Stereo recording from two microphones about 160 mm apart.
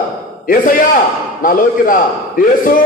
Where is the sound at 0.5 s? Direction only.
55° left (ahead or behind).